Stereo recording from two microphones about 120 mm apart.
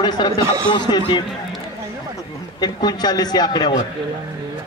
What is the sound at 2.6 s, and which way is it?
Speech, 35° left (ahead or behind).